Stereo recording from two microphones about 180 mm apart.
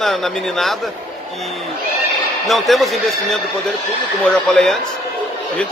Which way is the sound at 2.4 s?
Centre (ahead or behind).